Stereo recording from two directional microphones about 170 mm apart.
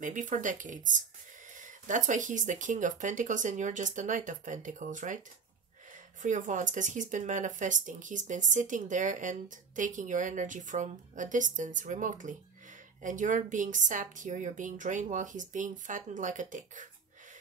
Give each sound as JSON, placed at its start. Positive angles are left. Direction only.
{"t": 0.0, "sound": "speech", "side_deg": -50}
{"t": 6.2, "sound": "speech", "side_deg": -45}